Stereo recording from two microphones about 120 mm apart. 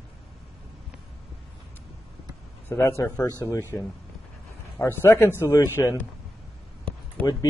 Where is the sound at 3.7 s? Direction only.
15° left (ahead or behind).